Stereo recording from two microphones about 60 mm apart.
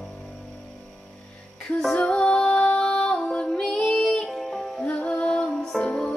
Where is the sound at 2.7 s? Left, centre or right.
Centre.